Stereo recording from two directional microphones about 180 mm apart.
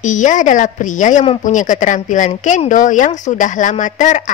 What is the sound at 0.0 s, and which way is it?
A woman's voice, 45° left (ahead or behind).